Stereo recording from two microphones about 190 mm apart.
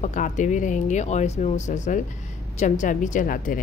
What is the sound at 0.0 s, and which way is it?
A woman's voice, 40° left (ahead or behind).